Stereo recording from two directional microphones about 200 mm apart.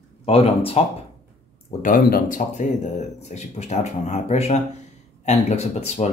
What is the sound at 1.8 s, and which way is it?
Speech, 45° left (ahead or behind).